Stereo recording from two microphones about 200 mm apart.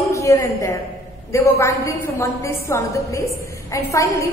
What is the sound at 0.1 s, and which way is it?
A woman's voice, 15° left (ahead or behind).